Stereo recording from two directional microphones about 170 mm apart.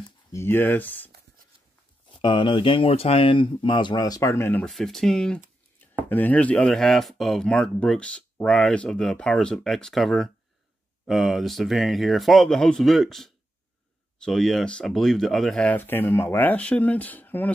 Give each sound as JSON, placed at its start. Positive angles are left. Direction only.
{"t": 0.3, "sound": "speech", "side_deg": 15}
{"t": 2.1, "sound": "speech", "side_deg": 30}
{"t": 4.6, "sound": "speech", "side_deg": 0}